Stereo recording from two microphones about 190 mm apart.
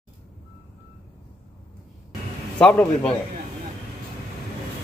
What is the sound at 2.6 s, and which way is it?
Speech, 5° left (ahead or behind).